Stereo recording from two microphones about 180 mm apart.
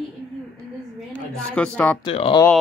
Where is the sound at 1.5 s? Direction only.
5° left (ahead or behind).